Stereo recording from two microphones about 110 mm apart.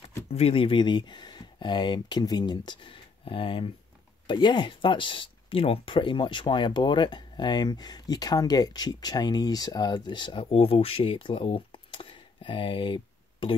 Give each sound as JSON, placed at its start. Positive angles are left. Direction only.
{"t": 0.3, "sound": "speech", "side_deg": 65}